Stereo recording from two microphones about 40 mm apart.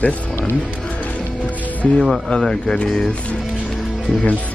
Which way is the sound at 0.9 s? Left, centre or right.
Left.